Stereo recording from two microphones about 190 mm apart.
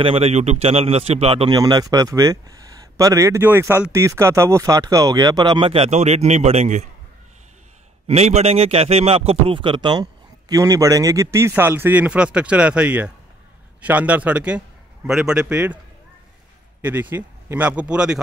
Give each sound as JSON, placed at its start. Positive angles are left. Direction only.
{"t": 0.0, "sound": "speech", "side_deg": -30}
{"t": 8.1, "sound": "a man's voice", "side_deg": -35}
{"t": 16.8, "sound": "speech", "side_deg": -10}